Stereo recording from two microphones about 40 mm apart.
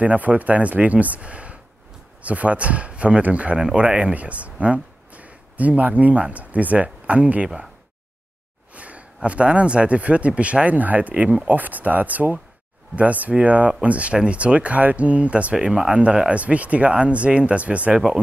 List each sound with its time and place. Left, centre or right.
0.0 s speech: right
5.1 s a sound: right
6.2 s speech: right
8.7 s speech: right
15.5 s speech: centre